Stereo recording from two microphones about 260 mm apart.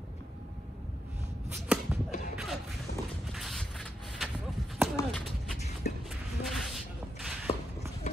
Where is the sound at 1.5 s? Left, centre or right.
Centre.